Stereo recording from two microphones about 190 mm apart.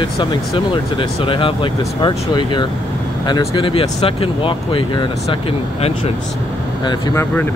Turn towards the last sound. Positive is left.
turn(degrees=15)  # may be behind; listen again after turning